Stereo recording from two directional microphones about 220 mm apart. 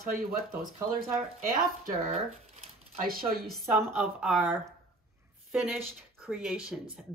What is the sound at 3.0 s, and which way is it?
Speech, 40° right (ahead or behind).